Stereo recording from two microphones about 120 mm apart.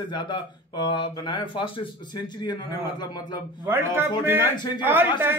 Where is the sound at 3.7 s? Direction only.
20° right (ahead or behind).